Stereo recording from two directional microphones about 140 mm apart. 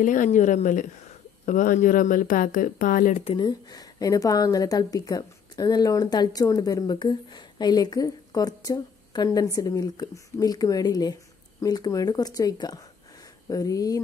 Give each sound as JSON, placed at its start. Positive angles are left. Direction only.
{"t": 0.0, "sound": "a woman's voice", "side_deg": 70}
{"t": 3.3, "sound": "a woman's voice", "side_deg": 30}